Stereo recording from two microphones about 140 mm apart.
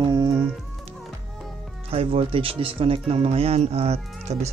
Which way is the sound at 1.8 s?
45° right (ahead or behind).